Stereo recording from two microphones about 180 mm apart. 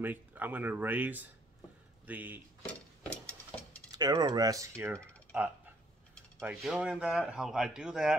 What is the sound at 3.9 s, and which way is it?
Speech, 25° right (ahead or behind).